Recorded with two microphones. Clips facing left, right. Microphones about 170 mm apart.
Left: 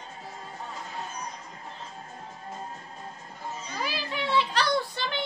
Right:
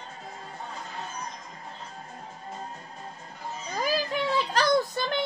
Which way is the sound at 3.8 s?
45° right (ahead or behind).